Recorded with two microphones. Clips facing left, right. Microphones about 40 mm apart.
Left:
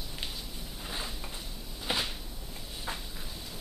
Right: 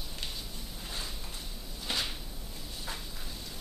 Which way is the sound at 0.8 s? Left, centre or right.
Centre.